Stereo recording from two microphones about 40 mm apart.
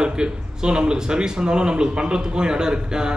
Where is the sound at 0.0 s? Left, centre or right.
Right.